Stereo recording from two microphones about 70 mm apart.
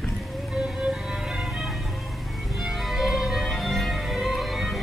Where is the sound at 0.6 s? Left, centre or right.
Centre.